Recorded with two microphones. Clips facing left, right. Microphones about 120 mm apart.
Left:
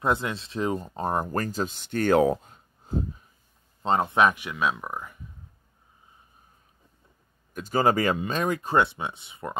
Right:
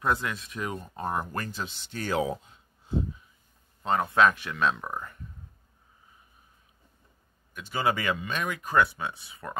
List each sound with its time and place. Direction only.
0.0 s speech: 25° left (ahead or behind); by 3.3 s 45° left (ahead or behind)
3.8 s speech: 25° left (ahead or behind); by 5.2 s 5° left (ahead or behind)
7.5 s speech: 40° left (ahead or behind); by 9.6 s 20° left (ahead or behind)